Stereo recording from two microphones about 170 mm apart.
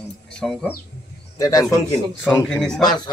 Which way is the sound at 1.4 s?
20° left (ahead or behind).